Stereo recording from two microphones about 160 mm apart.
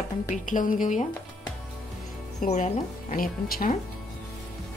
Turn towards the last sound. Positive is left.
turn(degrees=65)  # may be behind; listen again after turning